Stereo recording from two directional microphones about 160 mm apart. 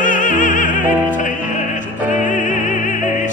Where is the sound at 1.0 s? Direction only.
55° left (ahead or behind).